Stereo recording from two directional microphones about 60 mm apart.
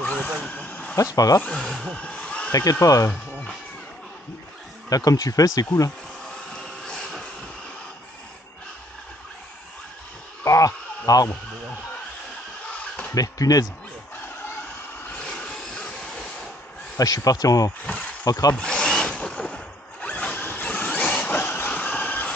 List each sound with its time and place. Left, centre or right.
0.0 s vehicle: left
1.1 s speech: left
1.5 s speech: centre
2.5 s speech: left
4.8 s speech: left
6.5 s vehicle: centre
10.4 s a sound: left
13.1 s speech: left
15.2 s train: centre
17.0 s speech: left
18.6 s wood: centre
20.0 s zipper: left
21.4 s vehicle: left